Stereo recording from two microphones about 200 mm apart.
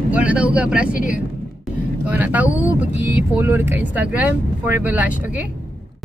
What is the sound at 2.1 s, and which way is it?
Vehicle, 10° right (ahead or behind).